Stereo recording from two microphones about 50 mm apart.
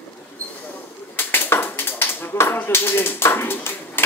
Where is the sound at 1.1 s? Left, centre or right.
Left.